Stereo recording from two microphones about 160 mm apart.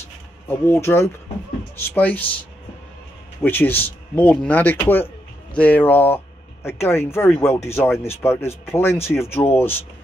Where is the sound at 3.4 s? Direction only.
10° left (ahead or behind).